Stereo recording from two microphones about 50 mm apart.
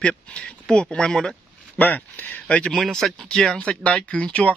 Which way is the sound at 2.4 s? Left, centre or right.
Left.